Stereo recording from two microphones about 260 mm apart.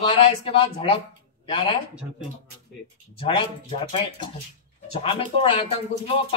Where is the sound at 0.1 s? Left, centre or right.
Left.